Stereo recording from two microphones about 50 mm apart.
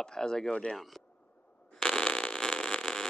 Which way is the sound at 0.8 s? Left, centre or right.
Centre.